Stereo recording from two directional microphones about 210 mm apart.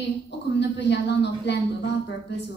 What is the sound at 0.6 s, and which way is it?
A woman's voice, 55° left (ahead or behind).